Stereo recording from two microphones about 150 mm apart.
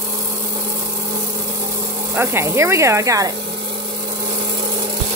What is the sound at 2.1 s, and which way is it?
Speech, 15° right (ahead or behind).